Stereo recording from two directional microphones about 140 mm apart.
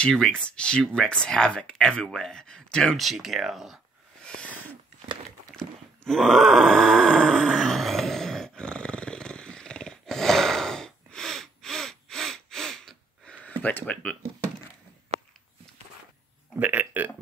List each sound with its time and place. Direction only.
0.0 s speech: 5° left (ahead or behind)
5.5 s groan: 5° left (ahead or behind)
15.1 s a sound: 50° right (ahead or behind)
16.5 s speech: 10° right (ahead or behind)